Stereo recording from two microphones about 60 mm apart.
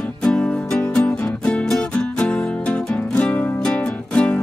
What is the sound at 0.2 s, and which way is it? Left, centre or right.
Music, left.